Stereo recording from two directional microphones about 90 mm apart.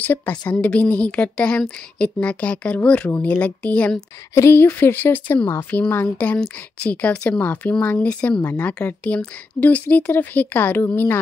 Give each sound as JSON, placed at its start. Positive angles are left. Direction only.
{"t": 0.0, "sound": "a woman's voice", "side_deg": 20}
{"t": 4.4, "sound": "a woman's voice", "side_deg": 25}